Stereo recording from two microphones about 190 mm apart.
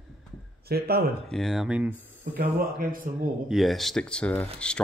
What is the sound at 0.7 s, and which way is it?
Speech, 55° right (ahead or behind).